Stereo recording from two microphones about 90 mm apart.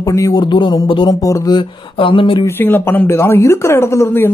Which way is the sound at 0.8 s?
70° left (ahead or behind).